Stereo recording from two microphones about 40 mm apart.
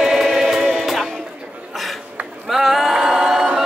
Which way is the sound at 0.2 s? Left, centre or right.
Centre.